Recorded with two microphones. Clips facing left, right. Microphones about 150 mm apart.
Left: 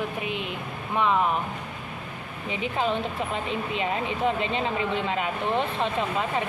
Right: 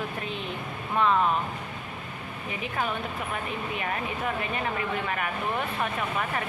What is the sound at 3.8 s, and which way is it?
Speech, 20° left (ahead or behind).